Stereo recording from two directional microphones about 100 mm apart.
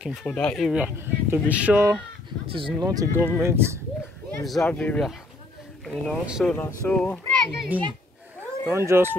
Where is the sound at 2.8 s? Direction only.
35° right (ahead or behind).